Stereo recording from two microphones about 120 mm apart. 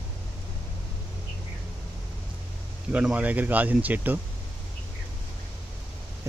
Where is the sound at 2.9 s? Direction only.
10° right (ahead or behind).